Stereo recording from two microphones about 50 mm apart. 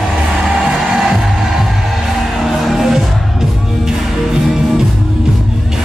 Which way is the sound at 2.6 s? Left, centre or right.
Centre.